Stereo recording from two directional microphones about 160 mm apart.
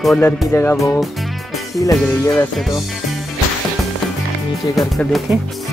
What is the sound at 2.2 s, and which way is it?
Speech, 20° left (ahead or behind).